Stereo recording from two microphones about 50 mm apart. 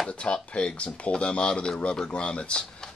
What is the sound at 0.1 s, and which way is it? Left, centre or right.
Speech, left.